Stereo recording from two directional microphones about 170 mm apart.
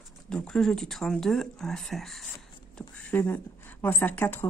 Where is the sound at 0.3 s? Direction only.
5° left (ahead or behind).